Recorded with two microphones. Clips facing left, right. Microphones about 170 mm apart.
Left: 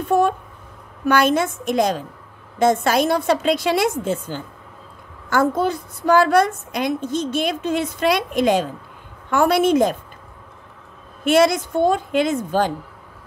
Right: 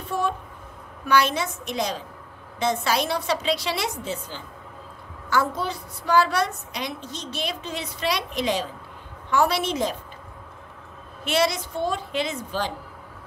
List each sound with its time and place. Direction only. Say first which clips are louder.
0.0 s a sound: left 9 dB; 50° left (ahead or behind)
1.0 s a woman's voice: left 5 dB; 50° left (ahead or behind)
11.2 s a woman's voice: left 8 dB; 50° left (ahead or behind)